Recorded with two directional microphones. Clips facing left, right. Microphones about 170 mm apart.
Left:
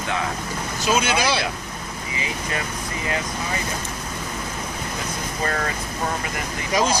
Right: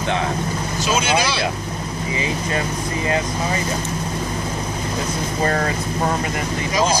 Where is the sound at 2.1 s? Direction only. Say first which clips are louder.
Right 5 dB; 30° right (ahead or behind).